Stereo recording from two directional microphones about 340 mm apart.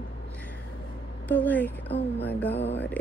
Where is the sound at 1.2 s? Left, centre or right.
Centre.